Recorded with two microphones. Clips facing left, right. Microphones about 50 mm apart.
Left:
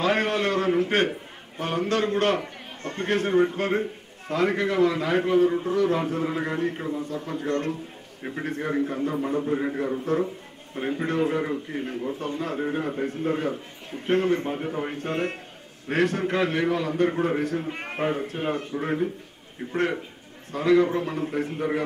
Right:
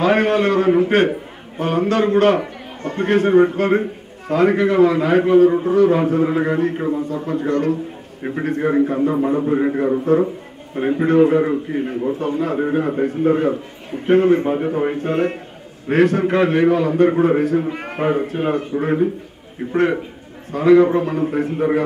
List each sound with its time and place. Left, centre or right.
0.0 s a man's voice: centre